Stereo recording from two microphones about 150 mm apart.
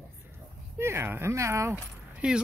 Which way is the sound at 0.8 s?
15° right (ahead or behind).